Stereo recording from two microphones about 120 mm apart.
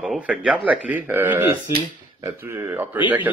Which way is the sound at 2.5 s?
15° right (ahead or behind).